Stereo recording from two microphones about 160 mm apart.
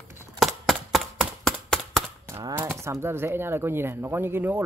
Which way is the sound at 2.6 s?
15° right (ahead or behind).